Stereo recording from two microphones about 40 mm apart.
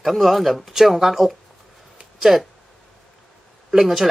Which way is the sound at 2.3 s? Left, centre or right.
Centre.